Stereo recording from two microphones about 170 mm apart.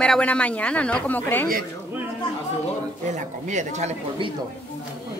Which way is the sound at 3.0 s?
45° right (ahead or behind).